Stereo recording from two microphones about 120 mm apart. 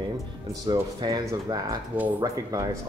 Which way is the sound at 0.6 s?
35° right (ahead or behind).